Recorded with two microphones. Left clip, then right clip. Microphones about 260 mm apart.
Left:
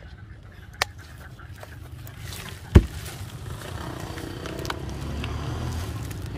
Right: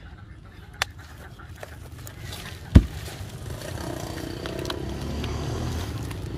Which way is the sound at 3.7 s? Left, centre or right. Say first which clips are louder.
Right 3 dB; right.